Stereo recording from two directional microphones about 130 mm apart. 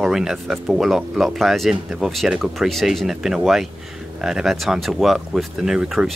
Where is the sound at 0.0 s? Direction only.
Centre (ahead or behind).